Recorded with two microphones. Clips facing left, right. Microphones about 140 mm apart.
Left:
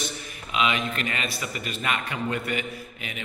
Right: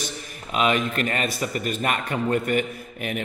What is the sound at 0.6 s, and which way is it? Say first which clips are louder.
A man's voice: right 4 dB; 45° right (ahead or behind).